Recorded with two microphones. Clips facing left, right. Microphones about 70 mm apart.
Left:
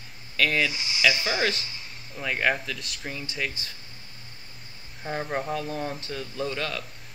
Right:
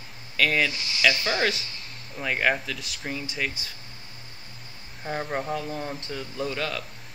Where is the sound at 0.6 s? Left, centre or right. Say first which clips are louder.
Even; centre.